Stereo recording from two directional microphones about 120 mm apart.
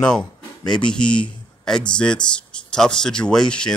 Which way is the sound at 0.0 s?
5° left (ahead or behind).